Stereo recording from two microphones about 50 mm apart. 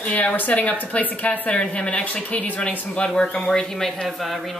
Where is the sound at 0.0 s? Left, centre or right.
Left; by 4.4 s centre.